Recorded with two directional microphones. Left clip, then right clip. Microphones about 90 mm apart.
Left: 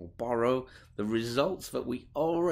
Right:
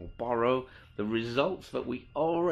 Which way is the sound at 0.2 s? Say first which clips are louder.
Right 1 dB; 40° left (ahead or behind).